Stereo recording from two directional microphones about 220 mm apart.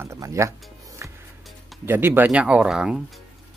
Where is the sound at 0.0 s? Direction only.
15° right (ahead or behind).